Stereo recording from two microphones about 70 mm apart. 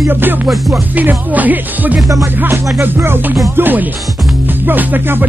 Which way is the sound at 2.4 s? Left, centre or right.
Right.